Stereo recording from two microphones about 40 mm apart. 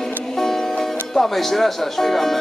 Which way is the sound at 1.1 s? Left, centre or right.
Centre.